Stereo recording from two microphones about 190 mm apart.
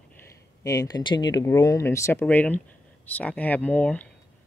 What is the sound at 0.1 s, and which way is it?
Speech, 15° left (ahead or behind).